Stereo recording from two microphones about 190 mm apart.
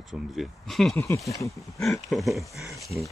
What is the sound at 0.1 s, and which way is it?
Speech, centre (ahead or behind).